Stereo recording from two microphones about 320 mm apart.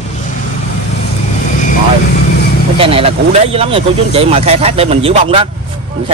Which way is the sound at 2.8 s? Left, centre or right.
Centre.